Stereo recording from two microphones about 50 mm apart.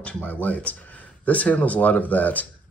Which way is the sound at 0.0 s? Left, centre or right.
Left.